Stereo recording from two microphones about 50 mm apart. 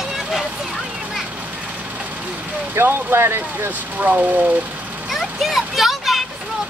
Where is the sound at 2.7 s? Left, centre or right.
Right.